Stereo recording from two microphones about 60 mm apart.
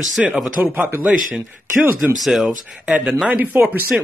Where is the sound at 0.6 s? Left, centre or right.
Right.